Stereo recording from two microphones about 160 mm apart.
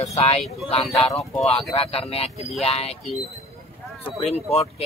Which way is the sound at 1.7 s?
40° left (ahead or behind).